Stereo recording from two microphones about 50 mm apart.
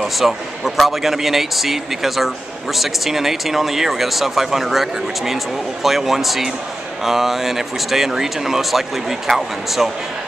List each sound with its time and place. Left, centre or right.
0.0 s speech: centre
9.3 s speech: centre